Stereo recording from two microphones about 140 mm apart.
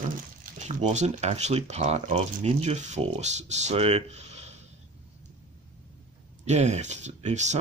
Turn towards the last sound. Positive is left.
turn(degrees=-55)  # may be behind; listen again after turning